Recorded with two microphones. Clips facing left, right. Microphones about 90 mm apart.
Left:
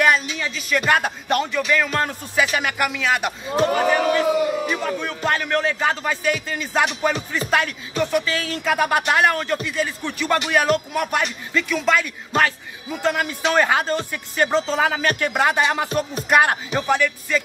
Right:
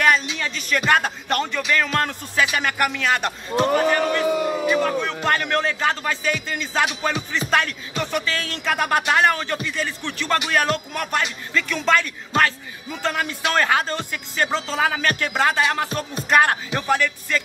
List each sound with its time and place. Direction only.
0.0 s a man's voice: 5° left (ahead or behind)